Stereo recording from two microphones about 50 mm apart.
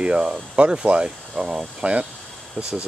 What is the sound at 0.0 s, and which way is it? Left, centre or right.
Speech, centre.